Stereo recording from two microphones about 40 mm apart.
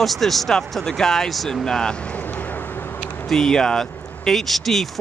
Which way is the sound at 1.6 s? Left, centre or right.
Centre.